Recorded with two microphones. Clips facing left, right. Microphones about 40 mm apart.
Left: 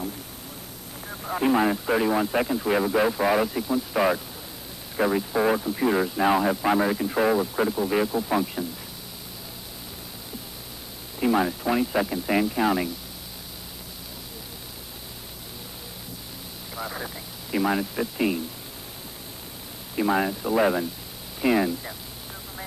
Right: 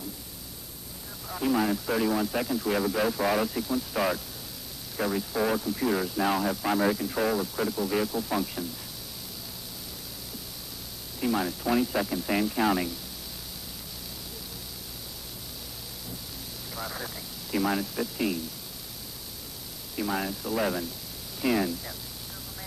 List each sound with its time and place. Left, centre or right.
1.2 s speech: left; by 8.6 s centre
11.1 s speech: left
16.7 s radio: centre
20.0 s speech: left